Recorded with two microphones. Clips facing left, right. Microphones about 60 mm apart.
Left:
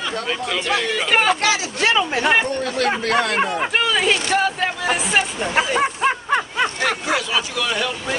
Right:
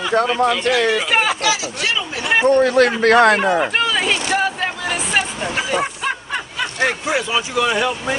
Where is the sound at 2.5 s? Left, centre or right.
Right.